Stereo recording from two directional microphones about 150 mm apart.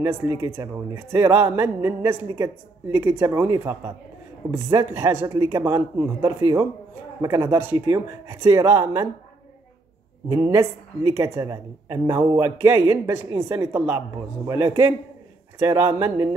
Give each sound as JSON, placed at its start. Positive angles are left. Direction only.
{"t": 0.0, "sound": "a woman's voice", "side_deg": -15}
{"t": 10.3, "sound": "a woman's voice", "side_deg": -15}